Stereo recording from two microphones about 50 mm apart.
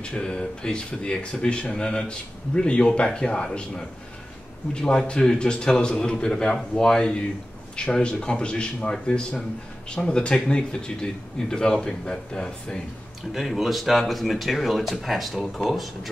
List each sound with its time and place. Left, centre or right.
0.0 s speech: centre
13.3 s speech: centre